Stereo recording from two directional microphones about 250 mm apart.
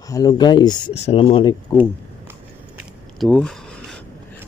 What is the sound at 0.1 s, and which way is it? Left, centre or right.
Speech, centre.